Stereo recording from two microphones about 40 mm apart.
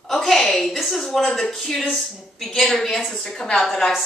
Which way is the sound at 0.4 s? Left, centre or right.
Centre.